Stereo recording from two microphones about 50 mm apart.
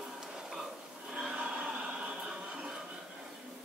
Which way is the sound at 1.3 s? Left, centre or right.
Right.